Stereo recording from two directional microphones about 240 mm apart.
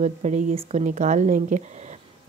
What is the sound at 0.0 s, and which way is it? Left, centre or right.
A woman's voice, right.